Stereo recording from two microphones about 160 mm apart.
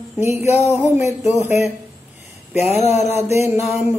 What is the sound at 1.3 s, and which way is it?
Mantra, 15° right (ahead or behind).